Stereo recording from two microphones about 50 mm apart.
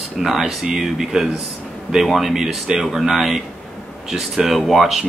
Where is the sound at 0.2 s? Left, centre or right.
Centre.